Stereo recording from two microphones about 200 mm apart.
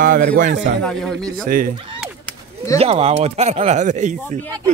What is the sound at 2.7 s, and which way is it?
Speech, 30° right (ahead or behind).